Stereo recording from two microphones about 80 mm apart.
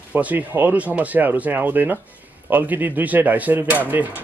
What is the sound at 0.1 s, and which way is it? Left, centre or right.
Speech, centre.